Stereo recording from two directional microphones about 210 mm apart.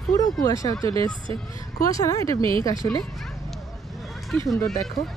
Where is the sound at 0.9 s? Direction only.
25° right (ahead or behind).